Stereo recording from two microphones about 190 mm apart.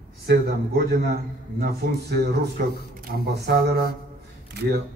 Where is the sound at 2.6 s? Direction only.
50° right (ahead or behind).